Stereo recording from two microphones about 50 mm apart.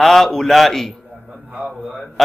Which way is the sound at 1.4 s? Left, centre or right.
Right.